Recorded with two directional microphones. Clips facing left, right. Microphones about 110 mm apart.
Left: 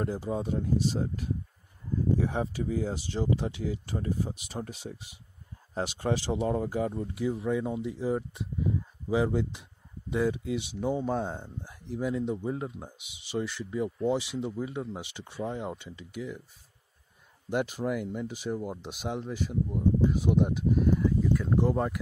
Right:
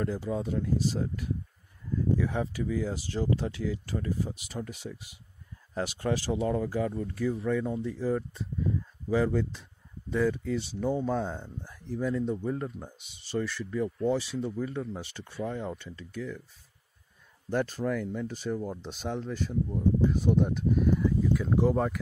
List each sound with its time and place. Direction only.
0.0 s speech: 25° left (ahead or behind)
17.5 s speech: 15° left (ahead or behind)